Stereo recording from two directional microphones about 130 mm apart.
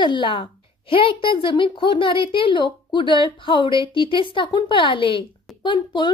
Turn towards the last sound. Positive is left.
turn(degrees=35)  # may be behind; listen again after turning